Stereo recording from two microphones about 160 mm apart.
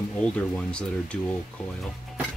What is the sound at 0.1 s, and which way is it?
Speech, 5° left (ahead or behind).